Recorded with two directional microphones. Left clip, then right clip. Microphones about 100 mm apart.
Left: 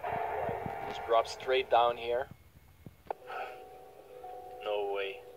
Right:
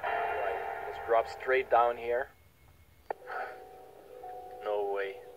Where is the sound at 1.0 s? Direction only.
25° right (ahead or behind).